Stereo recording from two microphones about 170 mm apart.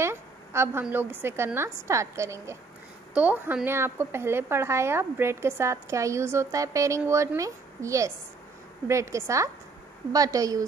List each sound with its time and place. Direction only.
0.0 s a woman's voice: 15° right (ahead or behind)